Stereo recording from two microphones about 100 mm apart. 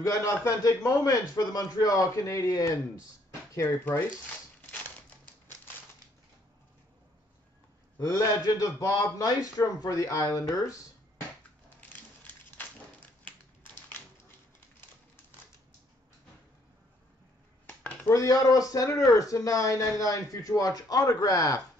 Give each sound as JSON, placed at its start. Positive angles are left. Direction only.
{"t": 0.0, "sound": "speech", "side_deg": 30}
{"t": 3.6, "sound": "speech", "side_deg": 15}
{"t": 8.0, "sound": "speech", "side_deg": 35}
{"t": 18.1, "sound": "speech", "side_deg": 35}